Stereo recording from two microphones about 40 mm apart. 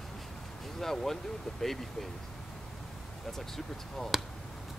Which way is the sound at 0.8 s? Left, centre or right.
Centre.